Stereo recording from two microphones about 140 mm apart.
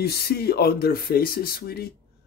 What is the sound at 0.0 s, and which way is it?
Speech, 90° left.